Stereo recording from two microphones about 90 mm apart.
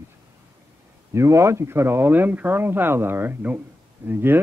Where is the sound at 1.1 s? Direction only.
30° right (ahead or behind).